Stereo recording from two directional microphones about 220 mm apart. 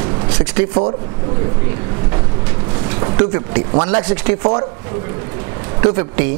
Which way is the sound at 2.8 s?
25° right (ahead or behind).